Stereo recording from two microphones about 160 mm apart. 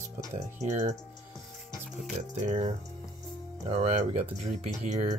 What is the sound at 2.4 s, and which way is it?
Speech, 45° right (ahead or behind).